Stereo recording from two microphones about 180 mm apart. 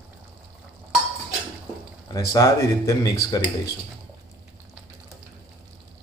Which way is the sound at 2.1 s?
20° left (ahead or behind).